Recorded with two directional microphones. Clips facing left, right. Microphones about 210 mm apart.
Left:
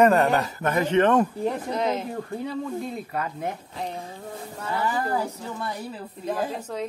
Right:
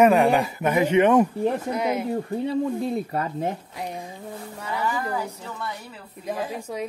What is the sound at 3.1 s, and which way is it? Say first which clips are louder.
Speech: right 3 dB; 30° right (ahead or behind).